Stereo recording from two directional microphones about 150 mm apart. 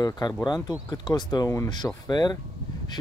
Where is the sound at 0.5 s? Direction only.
30° left (ahead or behind).